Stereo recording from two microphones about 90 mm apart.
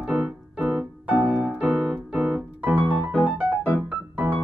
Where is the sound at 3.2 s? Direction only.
15° right (ahead or behind).